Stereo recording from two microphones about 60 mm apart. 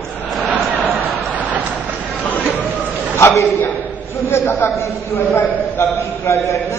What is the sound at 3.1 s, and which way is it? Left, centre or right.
A man's voice, left.